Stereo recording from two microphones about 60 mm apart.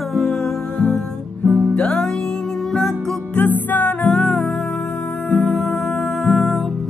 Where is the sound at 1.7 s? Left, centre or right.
Centre.